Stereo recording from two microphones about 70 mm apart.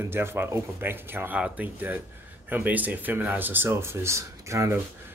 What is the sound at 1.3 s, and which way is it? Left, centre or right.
Speech, right.